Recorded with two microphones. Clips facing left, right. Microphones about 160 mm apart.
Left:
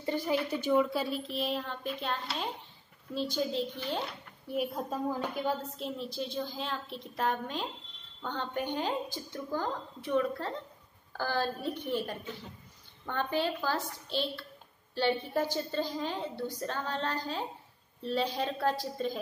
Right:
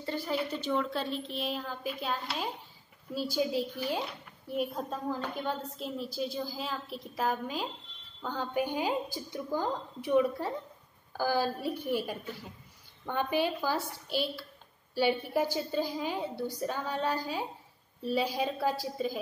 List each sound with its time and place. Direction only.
0.0 s a sound: 15° left (ahead or behind)
0.5 s a woman's voice: 10° left (ahead or behind); by 4.0 s 10° right (ahead or behind)
4.5 s a woman's voice: 5° left (ahead or behind)